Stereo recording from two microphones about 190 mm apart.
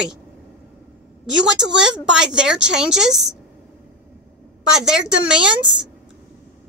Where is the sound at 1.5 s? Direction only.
5° right (ahead or behind).